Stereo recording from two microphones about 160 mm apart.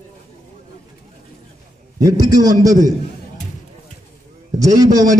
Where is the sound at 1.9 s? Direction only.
25° right (ahead or behind).